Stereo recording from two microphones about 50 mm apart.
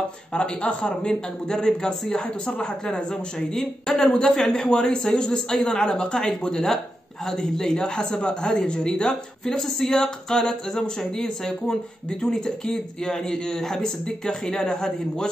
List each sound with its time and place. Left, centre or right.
0.3 s speech: centre